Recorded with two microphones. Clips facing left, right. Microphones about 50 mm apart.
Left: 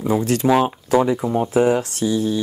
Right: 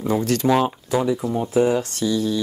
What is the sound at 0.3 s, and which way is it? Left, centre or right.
Speech, centre.